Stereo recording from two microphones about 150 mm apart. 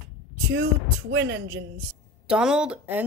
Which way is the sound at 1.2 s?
90° right.